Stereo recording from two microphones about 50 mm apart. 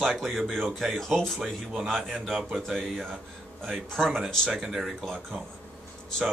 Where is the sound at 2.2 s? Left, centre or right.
Centre.